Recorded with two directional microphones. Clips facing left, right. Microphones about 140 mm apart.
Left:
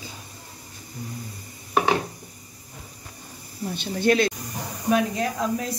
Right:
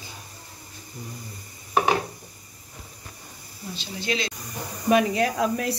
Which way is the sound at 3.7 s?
55° left (ahead or behind).